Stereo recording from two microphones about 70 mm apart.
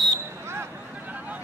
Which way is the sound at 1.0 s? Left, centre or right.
Right.